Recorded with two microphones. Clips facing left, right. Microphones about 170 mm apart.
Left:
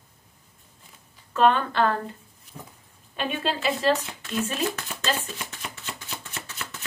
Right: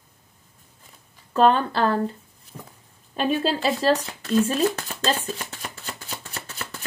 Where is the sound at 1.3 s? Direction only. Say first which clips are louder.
Right 2 dB; 35° right (ahead or behind).